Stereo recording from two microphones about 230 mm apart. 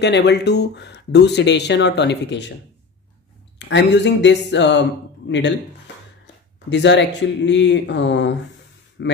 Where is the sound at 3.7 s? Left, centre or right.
Left.